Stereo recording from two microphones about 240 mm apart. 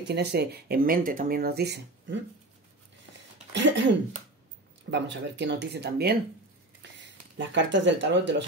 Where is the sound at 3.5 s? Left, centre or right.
Right.